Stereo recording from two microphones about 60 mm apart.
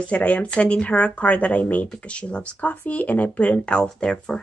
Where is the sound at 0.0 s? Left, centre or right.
Left.